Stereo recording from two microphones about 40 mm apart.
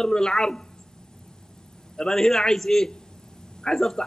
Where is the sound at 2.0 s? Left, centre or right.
Centre.